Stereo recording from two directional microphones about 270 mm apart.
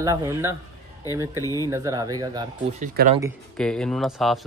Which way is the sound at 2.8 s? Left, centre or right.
Right.